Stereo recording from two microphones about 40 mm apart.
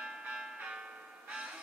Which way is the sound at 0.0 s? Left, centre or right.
Right.